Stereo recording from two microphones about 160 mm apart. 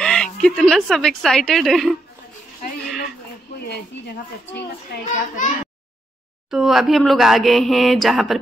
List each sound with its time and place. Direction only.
0.0 s speech: 5° left (ahead or behind)
4.9 s a child's voice: 90° left
5.4 s speech: 55° left (ahead or behind)
6.5 s speech: centre (ahead or behind)